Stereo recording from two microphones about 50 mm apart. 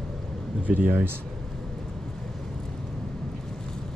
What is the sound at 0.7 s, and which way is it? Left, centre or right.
Speech, right.